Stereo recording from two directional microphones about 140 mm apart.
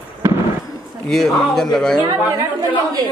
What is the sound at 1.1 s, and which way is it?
Speech, centre (ahead or behind).